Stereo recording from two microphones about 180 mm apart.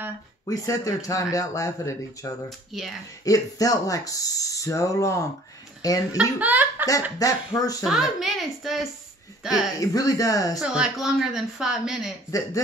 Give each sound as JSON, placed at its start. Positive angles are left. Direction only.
{"t": 0.5, "sound": "speech", "side_deg": 20}
{"t": 2.7, "sound": "a woman's voice", "side_deg": 0}
{"t": 3.3, "sound": "speech", "side_deg": 20}
{"t": 6.4, "sound": "speech", "side_deg": -10}
{"t": 7.2, "sound": "speech", "side_deg": 20}
{"t": 7.8, "sound": "a woman's voice", "side_deg": 0}
{"t": 9.8, "sound": "speech", "side_deg": 20}
{"t": 10.6, "sound": "a woman's voice", "side_deg": -5}
{"t": 12.3, "sound": "speech", "side_deg": 20}